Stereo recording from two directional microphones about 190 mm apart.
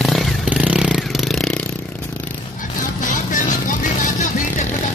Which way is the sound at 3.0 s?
40° left (ahead or behind).